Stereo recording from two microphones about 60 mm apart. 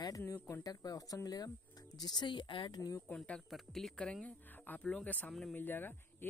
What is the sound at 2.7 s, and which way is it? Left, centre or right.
Speech, left.